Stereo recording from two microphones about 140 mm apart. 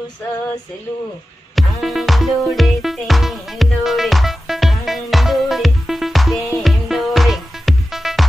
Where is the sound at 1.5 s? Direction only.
Centre (ahead or behind).